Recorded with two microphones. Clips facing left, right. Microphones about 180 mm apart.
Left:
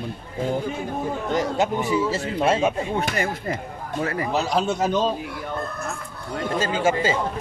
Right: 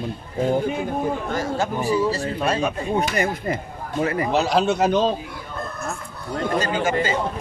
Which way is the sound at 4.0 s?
20° right (ahead or behind).